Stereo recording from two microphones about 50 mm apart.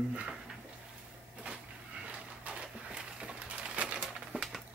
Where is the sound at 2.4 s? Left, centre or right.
Centre.